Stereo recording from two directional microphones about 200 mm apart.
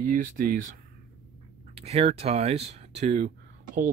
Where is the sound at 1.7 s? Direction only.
30° right (ahead or behind).